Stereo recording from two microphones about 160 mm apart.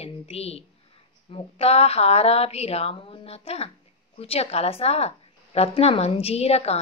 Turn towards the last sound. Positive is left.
turn(degrees=40)  # may be behind; listen again after turning